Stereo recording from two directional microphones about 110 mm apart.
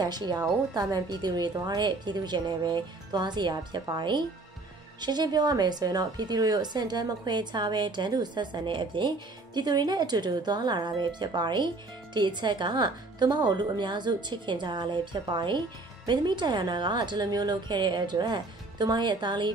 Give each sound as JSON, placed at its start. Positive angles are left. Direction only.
{"t": 0.0, "sound": "a woman's voice", "side_deg": -40}